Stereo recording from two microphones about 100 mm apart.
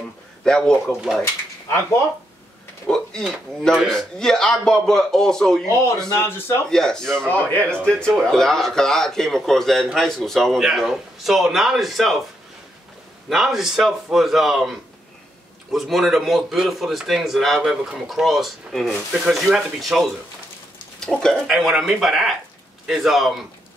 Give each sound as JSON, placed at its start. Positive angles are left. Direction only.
{"t": 0.4, "sound": "a man's voice", "side_deg": 5}
{"t": 2.9, "sound": "a man's voice", "side_deg": 5}
{"t": 6.1, "sound": "speech", "side_deg": 25}
{"t": 6.7, "sound": "a man's voice", "side_deg": 5}
{"t": 7.2, "sound": "a man's voice", "side_deg": 15}
{"t": 13.3, "sound": "a man's voice", "side_deg": 0}